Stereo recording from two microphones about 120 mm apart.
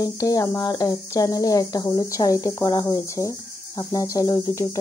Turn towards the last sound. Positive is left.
turn(degrees=35)  # may be behind; listen again after turning